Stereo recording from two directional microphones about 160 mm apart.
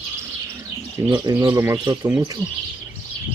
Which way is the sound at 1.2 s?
20° right (ahead or behind).